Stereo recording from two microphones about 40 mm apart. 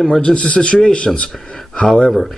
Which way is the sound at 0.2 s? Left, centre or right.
Left.